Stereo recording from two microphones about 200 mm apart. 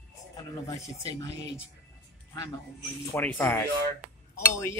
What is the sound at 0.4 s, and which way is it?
Speech, 15° left (ahead or behind).